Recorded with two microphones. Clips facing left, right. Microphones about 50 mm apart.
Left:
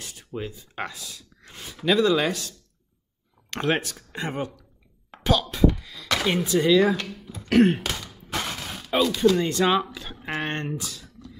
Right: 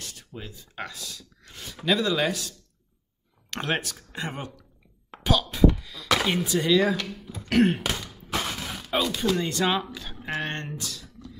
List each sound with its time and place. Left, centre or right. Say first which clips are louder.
0.0 s speech: left 6 dB; centre
1.9 s speech: left 3 dB; centre
7.4 s throat clearing: left 3 dB; centre
7.9 s a sound: right 1 dB; centre
10.4 s speech: left 3 dB; centre